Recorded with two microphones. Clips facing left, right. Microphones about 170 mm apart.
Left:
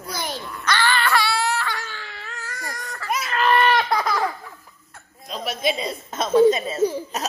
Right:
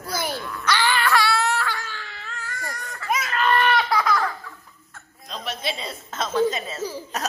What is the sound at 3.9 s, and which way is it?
Laughter, 20° left (ahead or behind).